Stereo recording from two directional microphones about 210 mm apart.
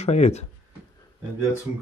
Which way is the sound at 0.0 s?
30° left (ahead or behind).